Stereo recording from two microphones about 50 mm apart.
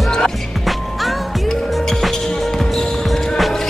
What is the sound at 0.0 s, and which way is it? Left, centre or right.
Music, centre.